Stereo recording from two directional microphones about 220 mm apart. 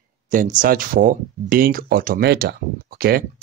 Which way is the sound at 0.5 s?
40° right (ahead or behind).